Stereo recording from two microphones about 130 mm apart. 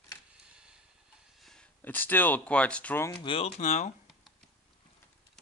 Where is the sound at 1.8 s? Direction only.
15° left (ahead or behind).